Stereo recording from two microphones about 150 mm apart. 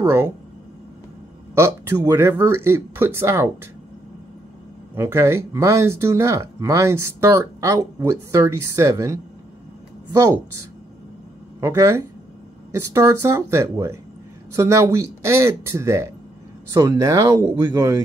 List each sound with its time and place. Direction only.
0.0 s speech: 15° right (ahead or behind)
1.5 s speech: 15° right (ahead or behind)
4.9 s speech: 15° right (ahead or behind)
11.6 s speech: 15° right (ahead or behind)